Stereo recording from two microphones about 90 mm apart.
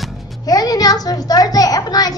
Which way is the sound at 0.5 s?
45° left (ahead or behind).